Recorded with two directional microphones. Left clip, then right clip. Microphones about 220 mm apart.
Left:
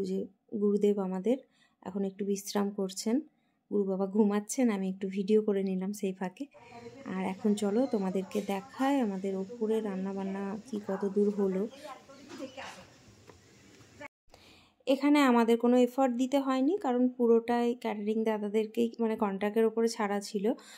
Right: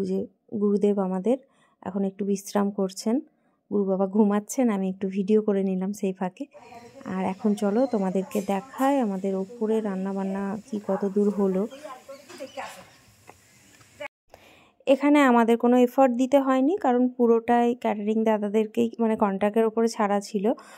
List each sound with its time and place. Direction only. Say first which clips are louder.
0.6 s speech: right 5 dB; 15° right (ahead or behind)
14.9 s speech: right 7 dB; 20° right (ahead or behind)